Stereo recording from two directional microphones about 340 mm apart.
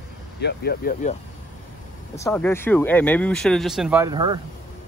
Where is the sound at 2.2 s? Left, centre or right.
Centre.